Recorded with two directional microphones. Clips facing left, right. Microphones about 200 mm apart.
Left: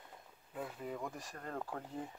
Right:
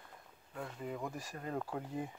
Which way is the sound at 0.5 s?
5° left (ahead or behind).